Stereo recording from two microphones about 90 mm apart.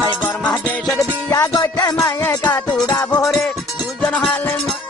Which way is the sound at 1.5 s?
50° left (ahead or behind).